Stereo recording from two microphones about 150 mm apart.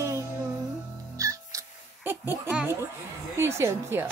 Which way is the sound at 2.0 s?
15° right (ahead or behind).